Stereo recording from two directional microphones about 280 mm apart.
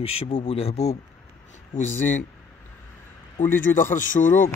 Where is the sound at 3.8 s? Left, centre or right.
Left.